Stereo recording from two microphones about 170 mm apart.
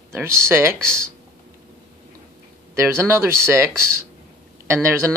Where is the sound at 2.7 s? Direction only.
15° right (ahead or behind).